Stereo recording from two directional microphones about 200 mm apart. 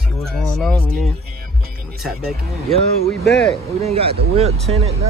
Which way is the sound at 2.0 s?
Centre (ahead or behind).